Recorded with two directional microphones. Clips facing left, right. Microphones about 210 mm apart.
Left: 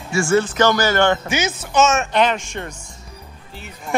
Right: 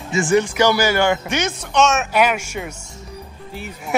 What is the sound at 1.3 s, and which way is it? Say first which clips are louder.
Speech: even; 5° left (ahead or behind).